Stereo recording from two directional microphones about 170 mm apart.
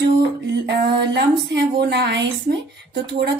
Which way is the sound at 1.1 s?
70° right (ahead or behind).